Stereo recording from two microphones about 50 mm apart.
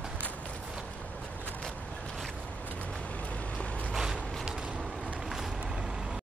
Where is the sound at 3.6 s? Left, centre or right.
Left.